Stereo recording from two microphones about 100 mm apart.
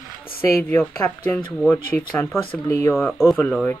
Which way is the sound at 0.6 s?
20° left (ahead or behind).